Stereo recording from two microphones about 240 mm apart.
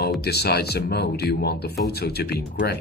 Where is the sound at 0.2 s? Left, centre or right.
Left.